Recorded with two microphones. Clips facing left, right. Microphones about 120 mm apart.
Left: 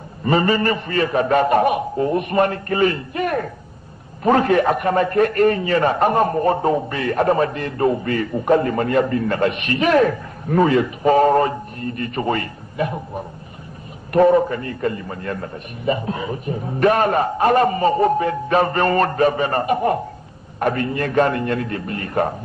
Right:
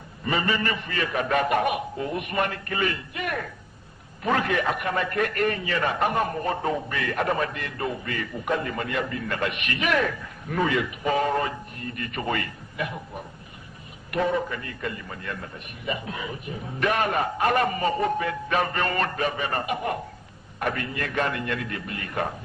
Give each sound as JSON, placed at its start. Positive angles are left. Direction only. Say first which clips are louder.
{"t": 0.2, "sound": "a man's voice", "louder": "left 8 dB", "side_deg": 40}